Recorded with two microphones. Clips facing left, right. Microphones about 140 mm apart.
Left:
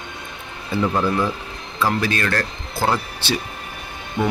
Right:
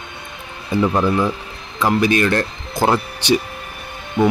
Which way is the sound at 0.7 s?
15° right (ahead or behind).